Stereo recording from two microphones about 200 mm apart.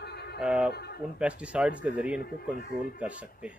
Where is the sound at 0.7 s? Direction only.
55° left (ahead or behind).